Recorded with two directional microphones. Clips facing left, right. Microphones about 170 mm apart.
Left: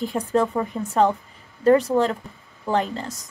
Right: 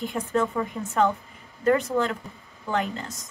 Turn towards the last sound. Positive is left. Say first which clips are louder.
# left 4 dB
turn(degrees=35)  # may be behind; listen again after turning